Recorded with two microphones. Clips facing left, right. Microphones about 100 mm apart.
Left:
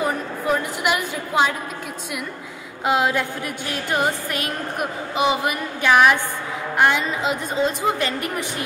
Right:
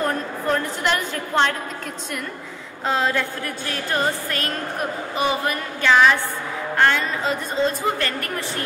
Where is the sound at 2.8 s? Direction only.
15° left (ahead or behind).